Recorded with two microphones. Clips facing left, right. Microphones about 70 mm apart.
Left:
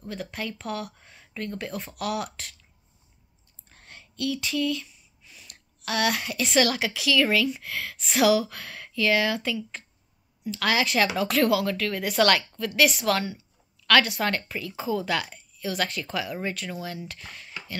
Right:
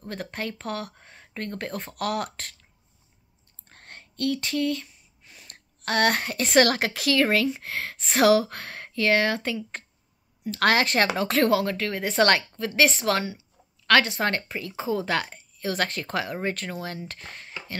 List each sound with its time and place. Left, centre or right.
0.1 s speech: right
3.6 s speech: right
10.5 s speech: right